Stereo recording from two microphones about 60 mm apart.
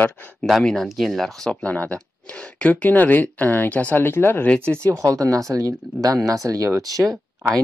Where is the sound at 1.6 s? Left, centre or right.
Left.